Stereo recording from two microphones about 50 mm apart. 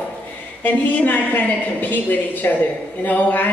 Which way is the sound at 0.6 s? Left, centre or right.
Left.